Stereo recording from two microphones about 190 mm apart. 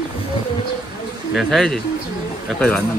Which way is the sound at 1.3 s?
Centre (ahead or behind).